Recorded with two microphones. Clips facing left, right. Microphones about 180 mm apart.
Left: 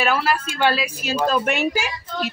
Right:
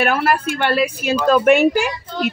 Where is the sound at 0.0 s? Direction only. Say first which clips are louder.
Right 4 dB; 55° right (ahead or behind).